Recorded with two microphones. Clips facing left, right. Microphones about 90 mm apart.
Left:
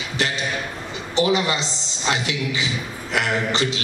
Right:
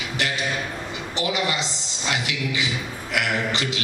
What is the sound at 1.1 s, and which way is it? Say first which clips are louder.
A woman's voice: left 5 dB; 30° left (ahead or behind).